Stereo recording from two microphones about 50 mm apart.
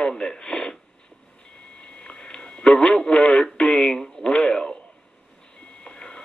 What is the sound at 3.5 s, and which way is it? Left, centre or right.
Radio, centre.